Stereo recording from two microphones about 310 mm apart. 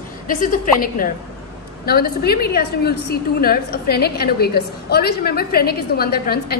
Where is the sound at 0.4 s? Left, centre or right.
Left.